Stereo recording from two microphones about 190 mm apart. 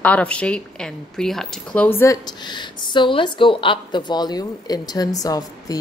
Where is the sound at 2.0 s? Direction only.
20° left (ahead or behind).